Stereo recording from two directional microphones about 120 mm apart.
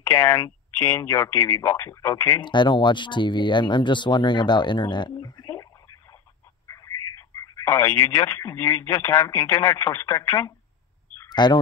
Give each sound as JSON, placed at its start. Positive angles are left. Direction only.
{"t": 0.0, "sound": "speech", "side_deg": 25}
{"t": 2.4, "sound": "speech", "side_deg": 40}
{"t": 6.7, "sound": "speech", "side_deg": 25}
{"t": 11.2, "sound": "bird", "side_deg": 40}